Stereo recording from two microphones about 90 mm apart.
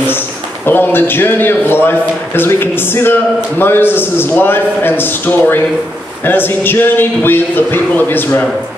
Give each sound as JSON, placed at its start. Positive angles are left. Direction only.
{"t": 0.7, "sound": "a man's voice", "side_deg": 25}